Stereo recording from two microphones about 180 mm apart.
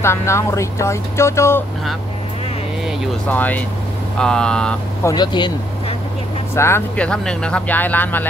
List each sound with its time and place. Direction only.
0.0 s speech: 15° left (ahead or behind)
3.3 s speech: 10° left (ahead or behind)
5.0 s speech: 25° left (ahead or behind)
6.5 s speech: 15° left (ahead or behind)